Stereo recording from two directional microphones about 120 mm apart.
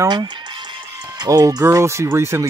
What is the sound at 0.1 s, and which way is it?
Speech, 40° right (ahead or behind).